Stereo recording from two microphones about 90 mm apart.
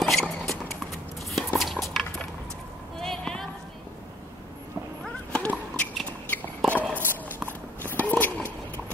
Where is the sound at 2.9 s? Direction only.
5° left (ahead or behind).